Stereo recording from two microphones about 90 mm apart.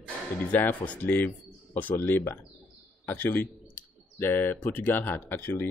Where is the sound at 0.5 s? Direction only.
20° left (ahead or behind).